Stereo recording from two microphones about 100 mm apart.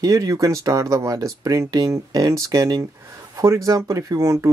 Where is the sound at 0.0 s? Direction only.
40° right (ahead or behind).